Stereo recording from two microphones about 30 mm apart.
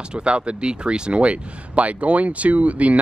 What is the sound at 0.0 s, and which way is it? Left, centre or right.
Speech, right.